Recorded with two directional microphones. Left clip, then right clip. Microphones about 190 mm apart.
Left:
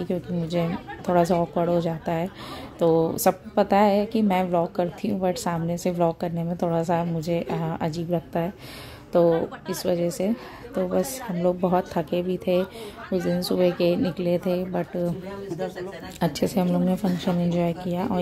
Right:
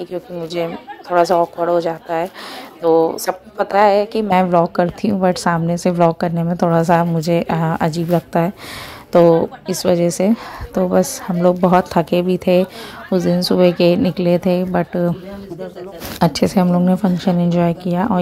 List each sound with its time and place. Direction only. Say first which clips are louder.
0.0 s a woman's voice: right 4 dB; 15° right (ahead or behind)
16.2 s a woman's voice: right 9 dB; 15° right (ahead or behind)